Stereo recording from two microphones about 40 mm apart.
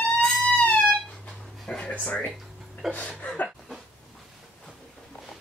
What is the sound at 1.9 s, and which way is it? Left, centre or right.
Speech, left.